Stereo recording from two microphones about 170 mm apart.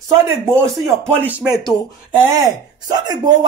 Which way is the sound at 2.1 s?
15° right (ahead or behind).